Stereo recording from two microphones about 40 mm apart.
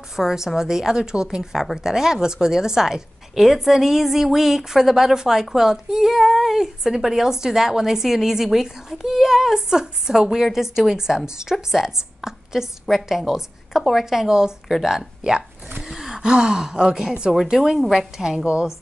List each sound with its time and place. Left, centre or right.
0.1 s a woman's voice: centre
17.7 s a woman's voice: centre
18.1 s a woman's voice: centre